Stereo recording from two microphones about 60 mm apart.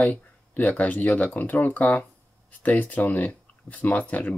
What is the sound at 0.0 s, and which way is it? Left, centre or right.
Speech, left.